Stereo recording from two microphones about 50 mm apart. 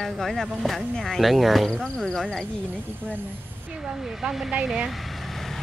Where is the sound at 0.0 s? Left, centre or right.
Centre.